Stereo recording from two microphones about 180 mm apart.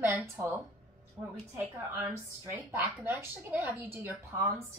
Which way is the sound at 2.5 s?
10° right (ahead or behind).